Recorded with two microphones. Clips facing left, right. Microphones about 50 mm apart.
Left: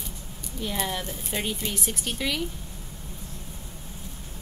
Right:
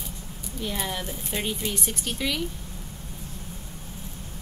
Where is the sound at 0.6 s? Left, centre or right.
Centre.